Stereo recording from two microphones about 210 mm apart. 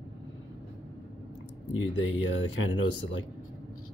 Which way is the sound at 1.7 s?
65° left (ahead or behind).